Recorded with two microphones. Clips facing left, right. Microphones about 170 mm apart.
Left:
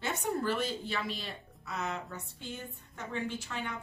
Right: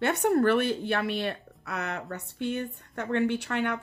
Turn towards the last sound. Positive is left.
turn(degrees=-65)  # may be behind; listen again after turning